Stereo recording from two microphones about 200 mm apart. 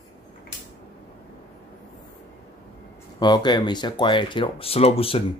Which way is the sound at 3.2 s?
20° left (ahead or behind).